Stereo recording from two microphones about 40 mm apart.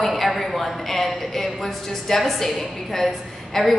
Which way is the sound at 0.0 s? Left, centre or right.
Centre.